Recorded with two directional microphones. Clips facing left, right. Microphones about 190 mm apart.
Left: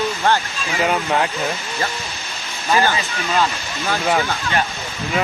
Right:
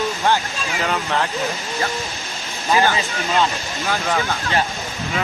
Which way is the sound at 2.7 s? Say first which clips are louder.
Even; 15° right (ahead or behind).